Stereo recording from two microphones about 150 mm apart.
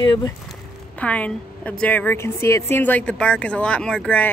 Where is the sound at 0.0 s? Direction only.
30° left (ahead or behind).